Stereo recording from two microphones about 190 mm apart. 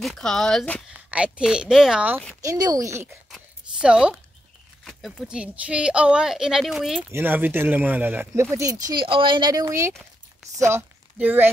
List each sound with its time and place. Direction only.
0.0 s speech: centre (ahead or behind)
2.4 s speech: 20° right (ahead or behind)
3.3 s a sound: 5° right (ahead or behind)
4.8 s speech: centre (ahead or behind)
8.8 s speech: 25° right (ahead or behind); by 11.4 s 10° right (ahead or behind)